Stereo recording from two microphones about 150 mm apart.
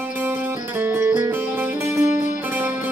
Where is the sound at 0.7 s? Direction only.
15° right (ahead or behind).